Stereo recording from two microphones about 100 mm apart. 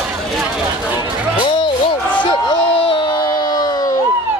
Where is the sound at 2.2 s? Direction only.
55° left (ahead or behind).